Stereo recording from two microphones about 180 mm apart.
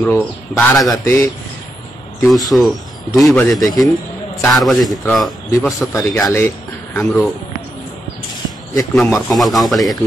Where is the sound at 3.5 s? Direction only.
20° left (ahead or behind).